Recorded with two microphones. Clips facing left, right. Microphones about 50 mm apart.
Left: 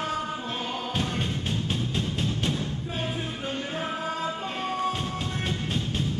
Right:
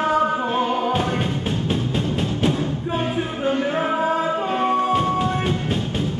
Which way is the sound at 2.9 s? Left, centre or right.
Right.